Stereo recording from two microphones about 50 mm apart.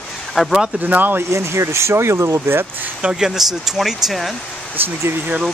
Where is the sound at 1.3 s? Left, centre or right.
Right.